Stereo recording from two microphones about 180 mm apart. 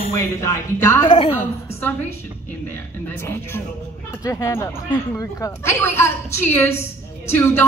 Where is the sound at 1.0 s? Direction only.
30° left (ahead or behind).